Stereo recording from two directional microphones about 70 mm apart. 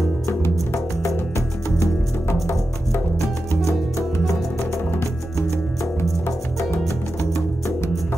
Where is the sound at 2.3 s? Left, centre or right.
Left.